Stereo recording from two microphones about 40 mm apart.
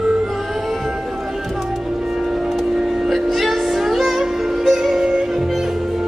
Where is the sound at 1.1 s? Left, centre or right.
Centre.